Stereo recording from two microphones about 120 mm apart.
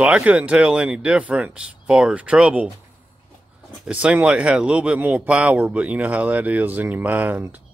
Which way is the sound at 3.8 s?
10° right (ahead or behind).